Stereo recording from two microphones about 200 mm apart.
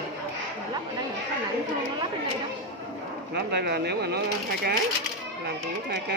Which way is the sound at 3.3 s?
55° right (ahead or behind).